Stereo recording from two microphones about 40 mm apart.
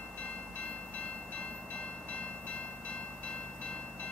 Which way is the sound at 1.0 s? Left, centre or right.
Left.